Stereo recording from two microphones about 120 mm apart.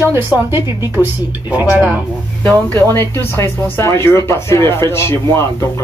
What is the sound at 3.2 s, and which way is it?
Speech, 20° left (ahead or behind).